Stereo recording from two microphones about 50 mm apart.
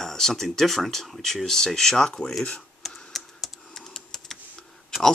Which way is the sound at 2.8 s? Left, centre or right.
Centre.